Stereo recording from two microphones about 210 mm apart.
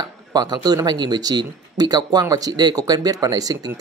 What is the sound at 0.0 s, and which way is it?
Speech, 20° right (ahead or behind).